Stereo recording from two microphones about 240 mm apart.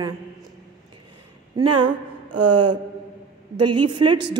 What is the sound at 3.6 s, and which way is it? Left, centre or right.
Speech, right.